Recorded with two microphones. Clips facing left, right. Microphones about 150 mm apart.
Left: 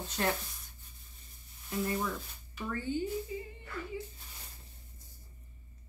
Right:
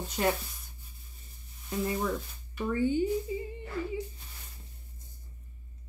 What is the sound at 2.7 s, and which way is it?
Speech, 15° right (ahead or behind).